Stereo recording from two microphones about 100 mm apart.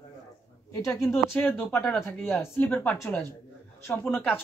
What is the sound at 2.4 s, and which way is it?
Speech, 20° left (ahead or behind).